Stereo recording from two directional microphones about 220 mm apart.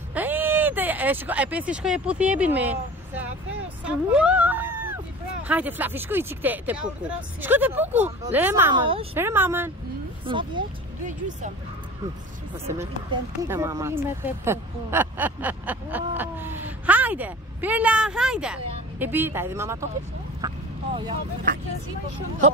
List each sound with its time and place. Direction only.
0.1 s speech: 10° right (ahead or behind)
3.8 s a sound: 5° right (ahead or behind)
5.5 s speech: 5° right (ahead or behind)
8.7 s speech: 25° right (ahead or behind)
9.1 s speech: 10° right (ahead or behind)
10.2 s speech: 20° right (ahead or behind)
11.1 s speech: 35° right (ahead or behind)
12.6 s speech: 15° right (ahead or behind)